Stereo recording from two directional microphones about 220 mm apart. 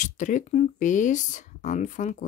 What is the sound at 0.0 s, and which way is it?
A woman's voice, 35° left (ahead or behind).